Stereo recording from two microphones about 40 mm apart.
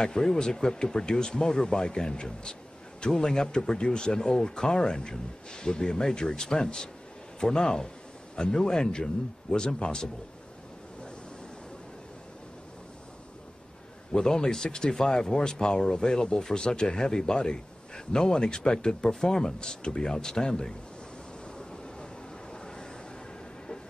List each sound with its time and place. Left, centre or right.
0.0 s speech: centre
14.1 s speech: centre
22.5 s vehicle: centre